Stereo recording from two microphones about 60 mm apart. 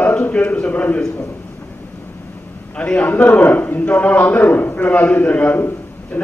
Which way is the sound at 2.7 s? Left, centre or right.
Centre.